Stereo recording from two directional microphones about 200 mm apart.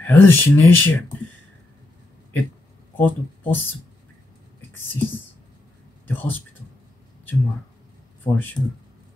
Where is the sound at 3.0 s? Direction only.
10° left (ahead or behind).